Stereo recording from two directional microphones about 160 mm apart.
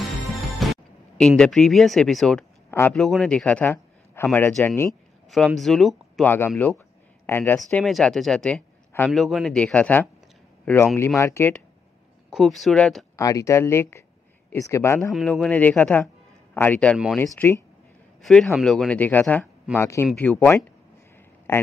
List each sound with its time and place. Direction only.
0.6 s music: centre (ahead or behind)
1.1 s a man's voice: 5° left (ahead or behind)
5.6 s speech: centre (ahead or behind)
6.2 s a man's voice: 15° left (ahead or behind)
6.5 s speech: 5° left (ahead or behind)
7.2 s a man's voice: 15° left (ahead or behind)
7.8 s a man's voice: centre (ahead or behind)
12.3 s speech: centre (ahead or behind)
13.1 s a man's voice: 20° left (ahead or behind)
15.1 s a man's voice: centre (ahead or behind)
18.2 s a man's voice: centre (ahead or behind)